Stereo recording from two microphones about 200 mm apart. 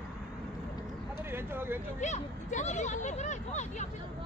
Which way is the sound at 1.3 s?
10° right (ahead or behind).